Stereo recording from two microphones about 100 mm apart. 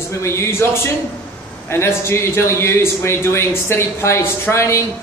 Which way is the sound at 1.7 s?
25° left (ahead or behind).